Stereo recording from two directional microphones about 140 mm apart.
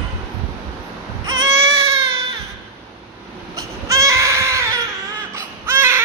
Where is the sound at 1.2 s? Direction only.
20° right (ahead or behind).